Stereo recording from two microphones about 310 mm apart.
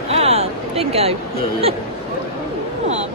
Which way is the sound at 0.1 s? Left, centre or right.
Centre.